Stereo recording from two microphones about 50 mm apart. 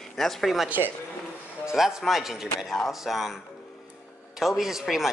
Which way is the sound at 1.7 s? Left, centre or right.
Centre.